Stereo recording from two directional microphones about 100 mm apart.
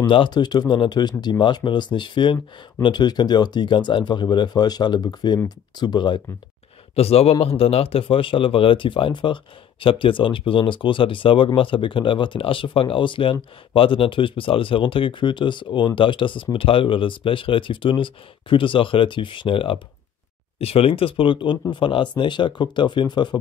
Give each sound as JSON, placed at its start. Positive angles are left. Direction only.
{"t": 0.0, "sound": "speech", "side_deg": 55}
{"t": 7.0, "sound": "speech", "side_deg": 90}
{"t": 20.5, "sound": "speech", "side_deg": 75}